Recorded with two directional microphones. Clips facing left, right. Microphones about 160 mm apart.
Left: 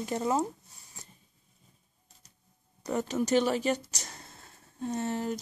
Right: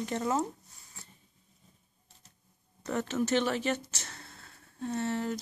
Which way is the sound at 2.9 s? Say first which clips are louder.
Left 2 dB; 15° left (ahead or behind).